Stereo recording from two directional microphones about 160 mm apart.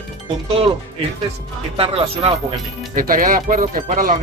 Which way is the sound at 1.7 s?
40° right (ahead or behind).